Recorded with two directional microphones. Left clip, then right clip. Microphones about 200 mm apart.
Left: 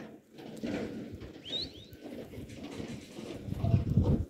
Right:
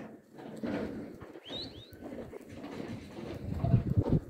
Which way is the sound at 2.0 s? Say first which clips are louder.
Right 1 dB; 20° right (ahead or behind).